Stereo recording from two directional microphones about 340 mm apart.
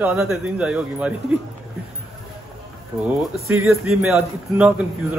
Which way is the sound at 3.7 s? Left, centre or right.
Centre.